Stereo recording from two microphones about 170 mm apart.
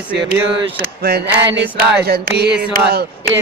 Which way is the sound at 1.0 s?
80° right.